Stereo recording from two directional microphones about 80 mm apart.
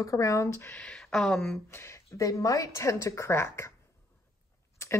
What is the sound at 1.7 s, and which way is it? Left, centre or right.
Speech, left.